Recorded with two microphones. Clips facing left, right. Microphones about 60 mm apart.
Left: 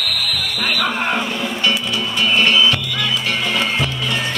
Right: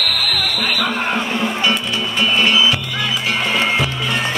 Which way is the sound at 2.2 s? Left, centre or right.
Centre.